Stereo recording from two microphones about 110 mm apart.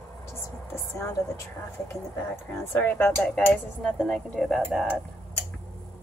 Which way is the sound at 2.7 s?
20° left (ahead or behind).